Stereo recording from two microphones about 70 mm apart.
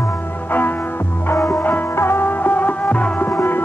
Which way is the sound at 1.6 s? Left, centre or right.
Left.